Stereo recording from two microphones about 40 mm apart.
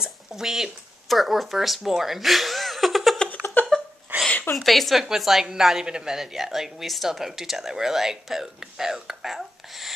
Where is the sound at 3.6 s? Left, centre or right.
Left.